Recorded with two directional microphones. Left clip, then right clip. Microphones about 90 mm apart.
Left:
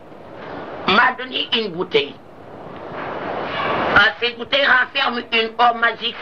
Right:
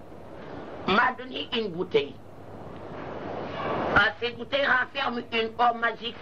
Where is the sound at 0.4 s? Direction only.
40° right (ahead or behind).